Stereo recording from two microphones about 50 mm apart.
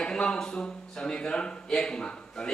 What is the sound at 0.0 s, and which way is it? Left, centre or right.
Speech, centre.